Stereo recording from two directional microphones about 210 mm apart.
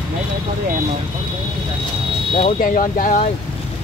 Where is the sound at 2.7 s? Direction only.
40° left (ahead or behind).